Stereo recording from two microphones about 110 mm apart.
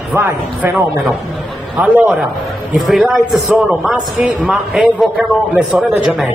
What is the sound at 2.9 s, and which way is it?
Speech, centre (ahead or behind).